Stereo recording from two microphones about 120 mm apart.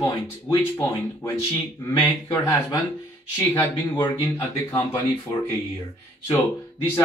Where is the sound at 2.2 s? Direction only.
25° left (ahead or behind).